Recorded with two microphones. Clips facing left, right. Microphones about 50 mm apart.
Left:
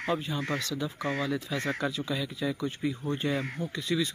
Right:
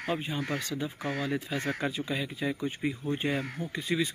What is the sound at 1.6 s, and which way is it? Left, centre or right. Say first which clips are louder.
Speech: left 1 dB; centre.